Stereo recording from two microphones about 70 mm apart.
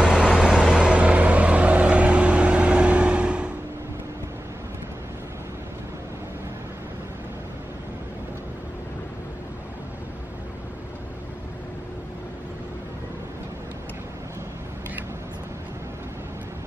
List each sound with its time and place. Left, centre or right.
0.1 s vehicle: centre